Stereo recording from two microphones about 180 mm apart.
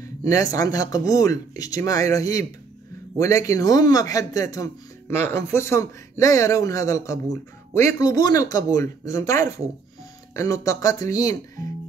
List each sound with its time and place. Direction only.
0.0 s speech: 20° left (ahead or behind)